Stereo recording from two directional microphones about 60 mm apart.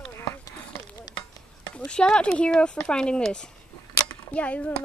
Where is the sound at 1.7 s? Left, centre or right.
Centre.